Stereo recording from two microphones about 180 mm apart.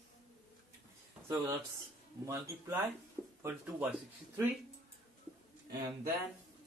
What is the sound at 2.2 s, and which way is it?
Speech, 15° right (ahead or behind).